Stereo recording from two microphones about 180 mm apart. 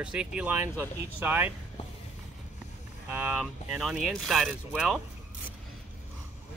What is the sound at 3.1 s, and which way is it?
Speech, 10° right (ahead or behind).